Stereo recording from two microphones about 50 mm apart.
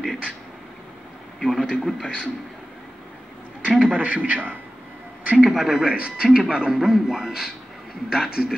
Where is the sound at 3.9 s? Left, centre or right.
Right.